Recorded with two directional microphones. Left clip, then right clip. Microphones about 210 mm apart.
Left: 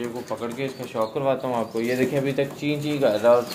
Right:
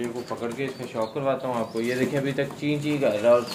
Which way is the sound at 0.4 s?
30° left (ahead or behind).